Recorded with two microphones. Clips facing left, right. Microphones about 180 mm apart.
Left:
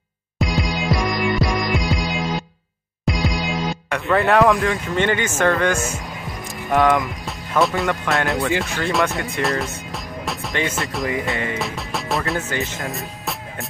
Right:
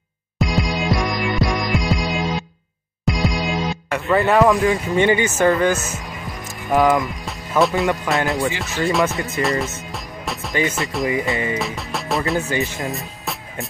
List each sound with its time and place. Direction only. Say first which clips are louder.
0.4 s music: right 1 dB; centre (ahead or behind)
3.1 s speech: right 1 dB; centre (ahead or behind)
8.0 s music: right 1 dB; centre (ahead or behind)
8.8 s speech: right 6 dB; centre (ahead or behind)
10.7 s music: right 2 dB; centre (ahead or behind)
12.4 s speech: right 3 dB; 10° right (ahead or behind)
12.8 s music: right 1 dB; centre (ahead or behind)